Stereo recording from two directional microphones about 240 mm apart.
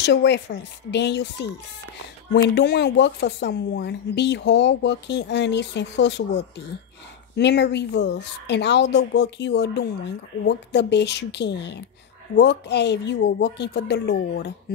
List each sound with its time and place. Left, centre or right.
0.0 s speech: left
2.5 s speech: left